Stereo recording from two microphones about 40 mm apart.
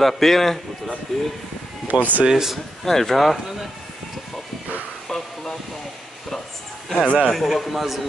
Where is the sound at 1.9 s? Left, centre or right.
Right.